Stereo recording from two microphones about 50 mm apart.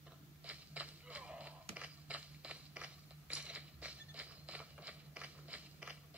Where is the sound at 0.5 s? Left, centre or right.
Right.